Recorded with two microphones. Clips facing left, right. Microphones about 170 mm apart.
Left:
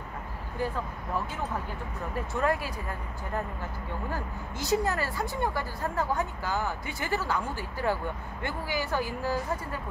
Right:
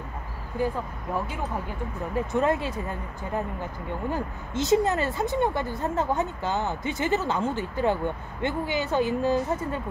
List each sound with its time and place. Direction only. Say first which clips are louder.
2.1 s speech: right 4 dB; 20° right (ahead or behind)